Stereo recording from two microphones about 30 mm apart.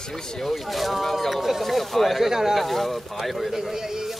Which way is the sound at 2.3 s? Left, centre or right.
Centre.